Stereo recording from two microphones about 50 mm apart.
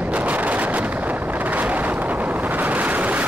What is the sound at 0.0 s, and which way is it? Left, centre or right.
Vehicle, right.